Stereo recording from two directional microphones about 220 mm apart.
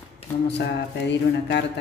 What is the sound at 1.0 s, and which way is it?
Speech, 50° left (ahead or behind).